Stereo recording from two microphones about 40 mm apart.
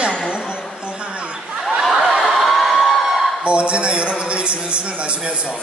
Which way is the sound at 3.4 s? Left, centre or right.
Right.